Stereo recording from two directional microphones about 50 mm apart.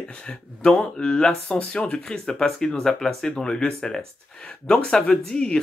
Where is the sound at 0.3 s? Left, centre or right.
Centre.